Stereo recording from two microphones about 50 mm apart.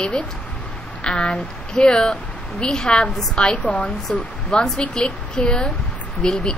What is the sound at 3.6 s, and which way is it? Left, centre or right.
Speech, left.